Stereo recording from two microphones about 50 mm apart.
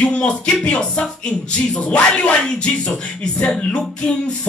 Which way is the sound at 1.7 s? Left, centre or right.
Left.